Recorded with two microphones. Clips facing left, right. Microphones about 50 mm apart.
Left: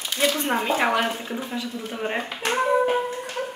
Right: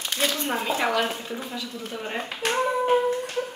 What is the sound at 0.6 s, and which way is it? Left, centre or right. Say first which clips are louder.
Speech: left 1 dB; left.